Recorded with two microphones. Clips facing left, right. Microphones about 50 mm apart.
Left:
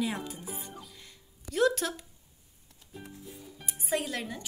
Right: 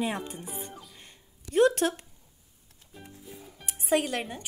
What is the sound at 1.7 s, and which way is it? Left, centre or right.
Speech, right.